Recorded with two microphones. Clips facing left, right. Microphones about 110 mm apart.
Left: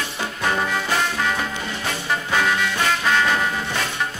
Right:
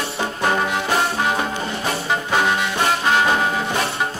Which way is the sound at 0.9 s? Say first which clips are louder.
Right 4 dB; 35° right (ahead or behind).